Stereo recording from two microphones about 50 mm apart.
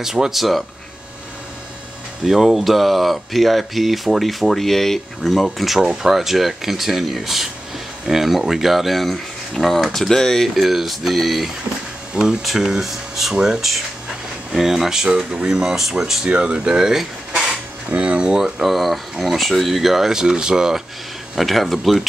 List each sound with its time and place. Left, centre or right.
0.0 s speech: centre
2.2 s speech: centre
5.8 s speech: centre
12.2 s speech: centre
17.8 s speech: right
18.6 s speech: centre
21.4 s speech: centre